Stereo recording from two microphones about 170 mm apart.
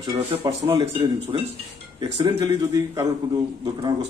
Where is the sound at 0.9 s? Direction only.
35° right (ahead or behind).